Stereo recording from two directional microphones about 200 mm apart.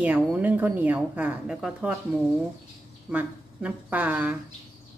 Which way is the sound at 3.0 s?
10° right (ahead or behind).